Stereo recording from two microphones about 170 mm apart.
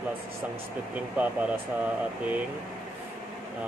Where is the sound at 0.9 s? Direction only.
10° right (ahead or behind).